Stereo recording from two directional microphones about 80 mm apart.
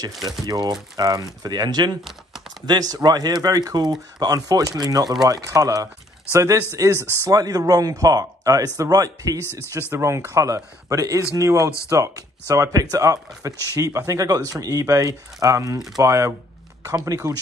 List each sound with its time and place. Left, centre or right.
0.1 s speech: centre
0.5 s speech: right
9.4 s speech: left
9.8 s speech: right